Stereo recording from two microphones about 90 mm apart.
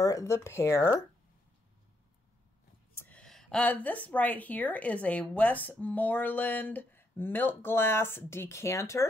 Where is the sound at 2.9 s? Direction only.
20° left (ahead or behind).